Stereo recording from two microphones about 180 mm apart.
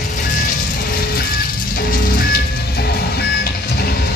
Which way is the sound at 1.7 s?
55° left (ahead or behind).